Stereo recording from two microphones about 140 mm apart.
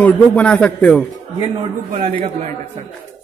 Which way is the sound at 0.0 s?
10° left (ahead or behind).